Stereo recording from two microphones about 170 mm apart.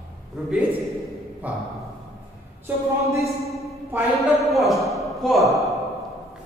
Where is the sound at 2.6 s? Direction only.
15° right (ahead or behind).